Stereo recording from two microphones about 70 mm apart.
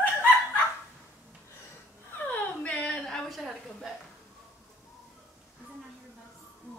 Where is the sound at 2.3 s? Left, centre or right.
Centre.